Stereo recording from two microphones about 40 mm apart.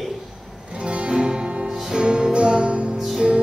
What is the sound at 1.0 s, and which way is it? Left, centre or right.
Music, right.